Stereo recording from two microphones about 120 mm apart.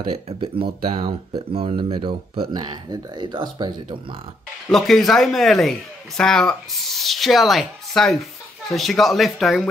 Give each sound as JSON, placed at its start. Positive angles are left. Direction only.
{"t": 0.4, "sound": "speech", "side_deg": -45}
{"t": 1.5, "sound": "speech", "side_deg": -55}
{"t": 4.6, "sound": "a man's voice", "side_deg": 0}